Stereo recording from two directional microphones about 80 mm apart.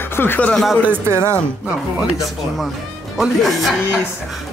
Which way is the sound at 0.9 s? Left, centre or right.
Right.